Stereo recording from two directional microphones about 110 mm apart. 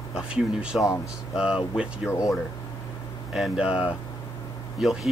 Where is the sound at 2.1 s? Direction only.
30° left (ahead or behind).